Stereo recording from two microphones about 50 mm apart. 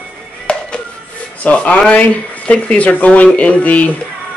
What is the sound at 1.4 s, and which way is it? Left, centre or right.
Speech, left.